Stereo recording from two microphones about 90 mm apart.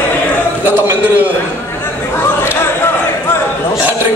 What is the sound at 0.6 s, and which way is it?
Speech, 20° right (ahead or behind).